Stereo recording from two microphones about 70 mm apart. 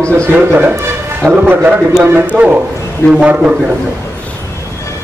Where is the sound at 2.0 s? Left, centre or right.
Right.